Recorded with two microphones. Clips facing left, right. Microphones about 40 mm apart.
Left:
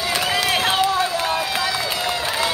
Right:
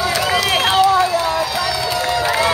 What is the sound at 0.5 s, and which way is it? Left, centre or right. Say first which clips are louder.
Run: right 3 dB; centre.